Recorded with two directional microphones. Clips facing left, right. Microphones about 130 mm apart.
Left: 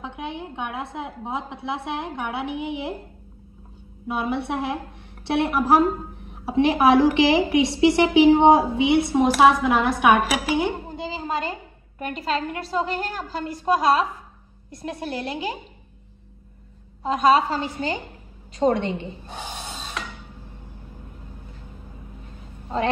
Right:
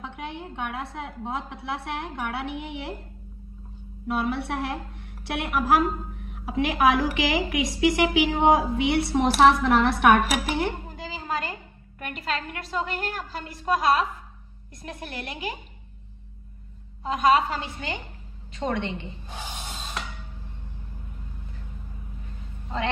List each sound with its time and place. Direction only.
0.0 s a woman's voice: 20° left (ahead or behind)
4.1 s a woman's voice: 20° left (ahead or behind)
8.7 s a woman's voice: 20° left (ahead or behind)
10.5 s a sound: 15° left (ahead or behind)
12.0 s a woman's voice: 35° left (ahead or behind)
17.0 s a woman's voice: 35° left (ahead or behind)